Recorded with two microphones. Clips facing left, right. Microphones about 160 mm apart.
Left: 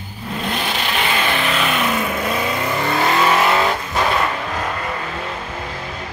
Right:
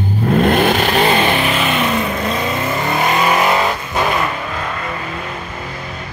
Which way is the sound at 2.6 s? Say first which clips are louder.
Right 1 dB; 20° right (ahead or behind).